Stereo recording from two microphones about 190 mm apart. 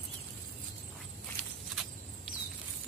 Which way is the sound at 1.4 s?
Centre (ahead or behind).